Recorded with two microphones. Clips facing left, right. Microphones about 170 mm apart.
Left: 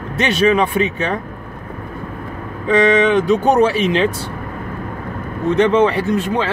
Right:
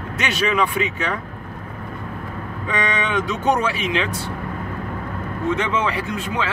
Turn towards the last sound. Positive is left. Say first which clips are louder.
# left 7 dB
turn(degrees=30)  # may be behind; listen again after turning